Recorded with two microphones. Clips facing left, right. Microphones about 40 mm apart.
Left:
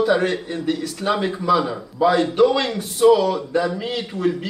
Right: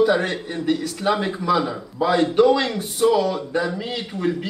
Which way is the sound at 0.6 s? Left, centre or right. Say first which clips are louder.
Right 2 dB; centre.